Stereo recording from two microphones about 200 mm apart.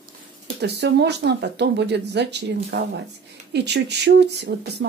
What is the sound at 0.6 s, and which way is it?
Speech, 55° right (ahead or behind).